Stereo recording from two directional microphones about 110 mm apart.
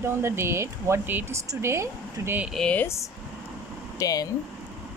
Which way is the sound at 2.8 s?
25° left (ahead or behind).